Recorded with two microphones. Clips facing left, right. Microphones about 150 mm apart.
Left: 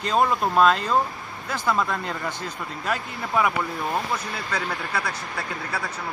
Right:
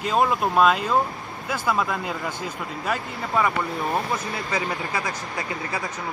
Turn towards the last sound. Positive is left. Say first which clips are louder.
# right 1 dB
turn(degrees=-15)  # may be behind; listen again after turning